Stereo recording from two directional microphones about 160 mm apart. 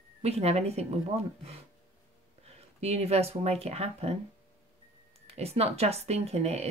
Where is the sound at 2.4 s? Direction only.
40° right (ahead or behind).